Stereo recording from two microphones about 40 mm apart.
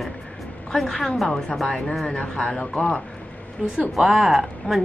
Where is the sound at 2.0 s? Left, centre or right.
Left.